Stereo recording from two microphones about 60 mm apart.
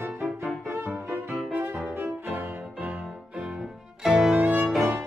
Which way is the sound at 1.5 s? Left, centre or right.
Right.